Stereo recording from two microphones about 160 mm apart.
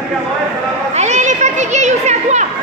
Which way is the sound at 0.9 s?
45° right (ahead or behind).